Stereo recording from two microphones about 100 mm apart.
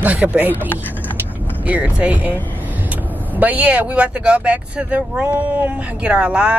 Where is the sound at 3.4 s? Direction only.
15° right (ahead or behind).